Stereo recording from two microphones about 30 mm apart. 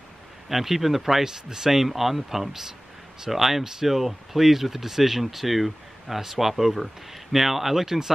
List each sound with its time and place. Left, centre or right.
0.5 s speech: centre
1.2 s speech: centre